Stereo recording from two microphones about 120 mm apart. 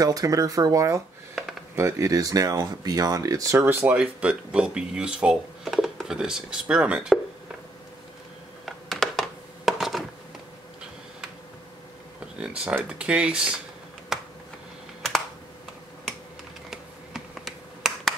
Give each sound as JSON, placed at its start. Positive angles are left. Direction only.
{"t": 0.0, "sound": "speech", "side_deg": -30}
{"t": 3.5, "sound": "speech", "side_deg": -15}
{"t": 8.6, "sound": "a sound", "side_deg": 0}
{"t": 12.4, "sound": "speech", "side_deg": -10}
{"t": 14.1, "sound": "a sound", "side_deg": -5}
{"t": 15.0, "sound": "computer keyboard", "side_deg": 0}
{"t": 16.7, "sound": "finger snapping", "side_deg": -5}